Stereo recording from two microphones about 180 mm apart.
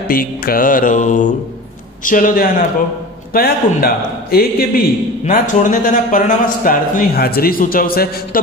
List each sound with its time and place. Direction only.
0.1 s a man's voice: 55° left (ahead or behind)
5.2 s a man's voice: 45° left (ahead or behind)